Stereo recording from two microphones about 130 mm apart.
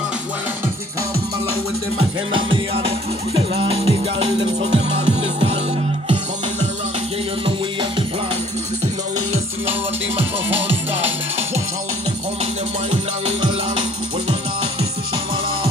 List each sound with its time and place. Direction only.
2.0 s music: 45° right (ahead or behind)
14.2 s music: 50° right (ahead or behind)